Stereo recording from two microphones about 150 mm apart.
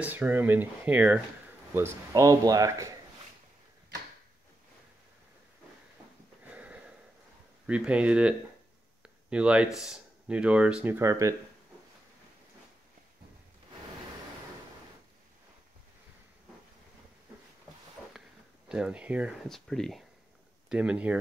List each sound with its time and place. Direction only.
0.0 s speech: 10° right (ahead or behind)
6.4 s sniff: 10° right (ahead or behind)
7.6 s speech: 10° right (ahead or behind)
18.0 s a sound: 10° left (ahead or behind)
18.7 s speech: 5° right (ahead or behind)
19.4 s speech: centre (ahead or behind)